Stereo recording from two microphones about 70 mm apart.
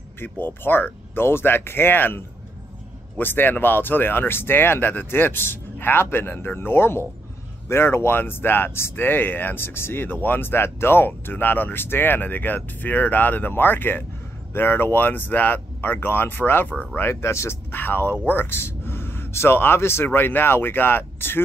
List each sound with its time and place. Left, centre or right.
0.2 s speech: left
17.0 s speech: left